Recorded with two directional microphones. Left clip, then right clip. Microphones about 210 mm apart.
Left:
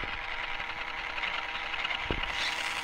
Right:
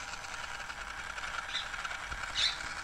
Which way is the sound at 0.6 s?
20° left (ahead or behind).